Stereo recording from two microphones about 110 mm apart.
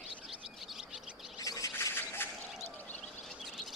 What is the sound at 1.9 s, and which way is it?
Squawk, 20° left (ahead or behind).